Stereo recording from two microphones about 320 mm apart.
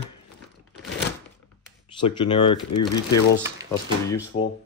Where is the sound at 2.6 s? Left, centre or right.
Left.